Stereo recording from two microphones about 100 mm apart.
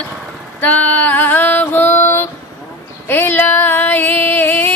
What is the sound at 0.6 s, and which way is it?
Female singing, 15° left (ahead or behind).